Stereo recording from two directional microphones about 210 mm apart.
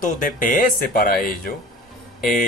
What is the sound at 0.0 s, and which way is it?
Speech, 40° left (ahead or behind).